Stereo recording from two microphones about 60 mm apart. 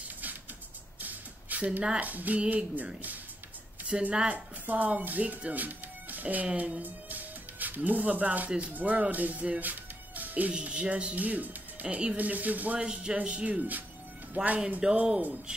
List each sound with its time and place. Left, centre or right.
1.0 s music: right
2.4 s speech: right
12.8 s speech: centre
14.8 s speech: centre